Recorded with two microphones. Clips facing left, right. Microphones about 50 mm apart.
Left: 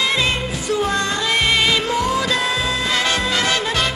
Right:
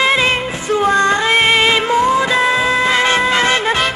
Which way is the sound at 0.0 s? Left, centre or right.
Right.